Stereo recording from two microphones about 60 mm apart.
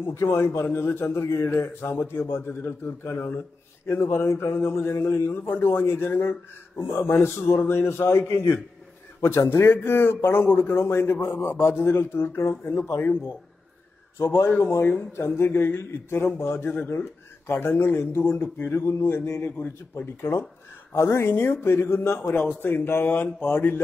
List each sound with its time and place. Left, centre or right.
0.0 s a man's voice: left
1.2 s a man's voice: left
1.5 s a man's voice: left
14.1 s a man's voice: left
16.6 s speech: left
17.5 s a man's voice: left
20.9 s a man's voice: left
21.3 s a man's voice: left